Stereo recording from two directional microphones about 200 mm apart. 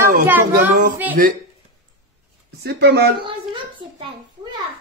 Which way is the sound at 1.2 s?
45° right (ahead or behind).